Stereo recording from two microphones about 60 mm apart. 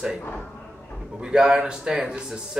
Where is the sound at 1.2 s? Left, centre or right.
Centre.